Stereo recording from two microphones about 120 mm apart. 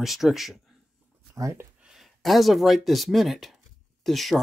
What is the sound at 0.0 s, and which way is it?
Speech, centre (ahead or behind).